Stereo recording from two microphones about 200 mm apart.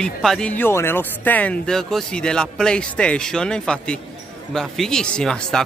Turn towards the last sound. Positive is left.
turn(degrees=5)  # may be behind; listen again after turning